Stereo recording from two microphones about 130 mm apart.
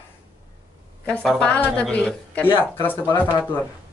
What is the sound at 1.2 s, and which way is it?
Speech, centre (ahead or behind).